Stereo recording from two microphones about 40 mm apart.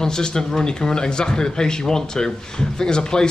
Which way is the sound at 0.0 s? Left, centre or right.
Centre.